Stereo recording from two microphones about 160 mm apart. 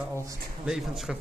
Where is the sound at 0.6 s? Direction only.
5° right (ahead or behind).